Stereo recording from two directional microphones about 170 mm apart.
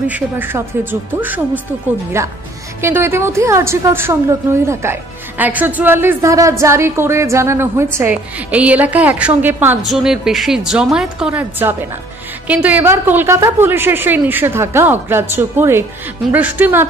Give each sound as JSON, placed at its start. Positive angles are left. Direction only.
{"t": 0.1, "sound": "a woman's voice", "side_deg": -10}